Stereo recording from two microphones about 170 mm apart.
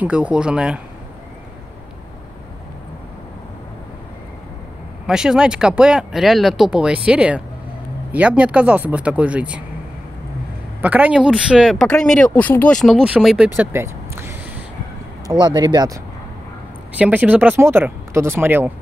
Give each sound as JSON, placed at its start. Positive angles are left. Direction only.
{"t": 0.0, "sound": "speech", "side_deg": -5}
{"t": 5.0, "sound": "speech", "side_deg": -5}
{"t": 10.8, "sound": "speech", "side_deg": -10}
{"t": 13.6, "sound": "vehicle", "side_deg": -15}
{"t": 15.2, "sound": "speech", "side_deg": -25}
{"t": 17.0, "sound": "speech", "side_deg": -10}